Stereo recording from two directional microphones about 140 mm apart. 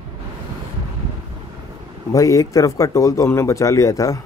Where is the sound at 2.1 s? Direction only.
25° left (ahead or behind).